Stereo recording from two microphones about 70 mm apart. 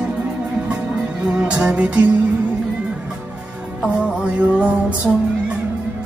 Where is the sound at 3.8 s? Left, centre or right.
Centre.